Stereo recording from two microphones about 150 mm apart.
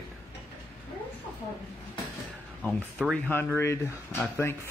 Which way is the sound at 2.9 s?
5° left (ahead or behind).